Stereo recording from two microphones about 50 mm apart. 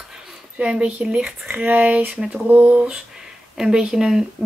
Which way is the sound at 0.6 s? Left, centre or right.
Centre.